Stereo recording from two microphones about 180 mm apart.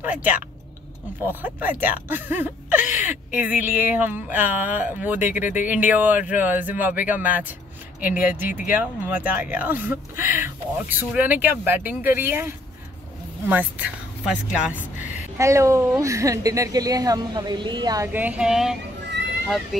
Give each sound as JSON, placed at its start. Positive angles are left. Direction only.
{"t": 0.0, "sound": "speech", "side_deg": -10}
{"t": 5.4, "sound": "speech", "side_deg": 45}
{"t": 5.7, "sound": "speech", "side_deg": -10}
{"t": 8.5, "sound": "speech", "side_deg": 45}
{"t": 8.7, "sound": "speech", "side_deg": -10}
{"t": 15.0, "sound": "a sound", "side_deg": -15}
{"t": 16.0, "sound": "speech", "side_deg": -15}